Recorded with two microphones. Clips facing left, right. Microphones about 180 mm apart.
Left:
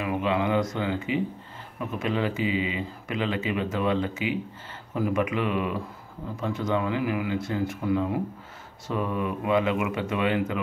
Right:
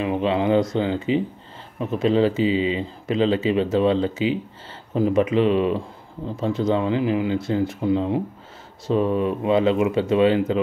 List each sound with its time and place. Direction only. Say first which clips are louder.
0.0 s speech: right 5 dB; 30° right (ahead or behind)